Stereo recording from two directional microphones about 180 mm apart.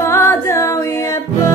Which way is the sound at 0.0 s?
15° left (ahead or behind).